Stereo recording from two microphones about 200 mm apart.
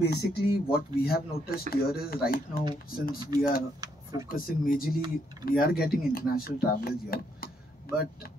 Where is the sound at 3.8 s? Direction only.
20° right (ahead or behind).